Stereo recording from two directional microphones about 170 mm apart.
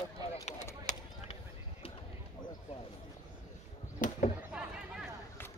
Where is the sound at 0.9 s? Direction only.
45° left (ahead or behind).